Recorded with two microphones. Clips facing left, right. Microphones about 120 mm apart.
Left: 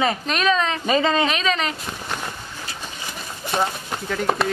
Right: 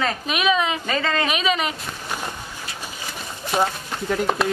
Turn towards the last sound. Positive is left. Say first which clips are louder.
# right 1 dB
turn(degrees=0)  # may be behind; listen again after turning